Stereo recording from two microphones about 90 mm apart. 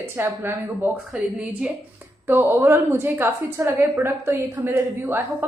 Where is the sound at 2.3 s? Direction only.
25° right (ahead or behind).